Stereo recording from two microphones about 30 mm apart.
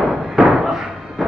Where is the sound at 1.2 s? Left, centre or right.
Centre.